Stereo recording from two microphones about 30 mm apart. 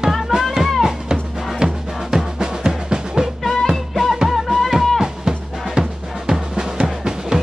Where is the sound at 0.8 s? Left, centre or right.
Right.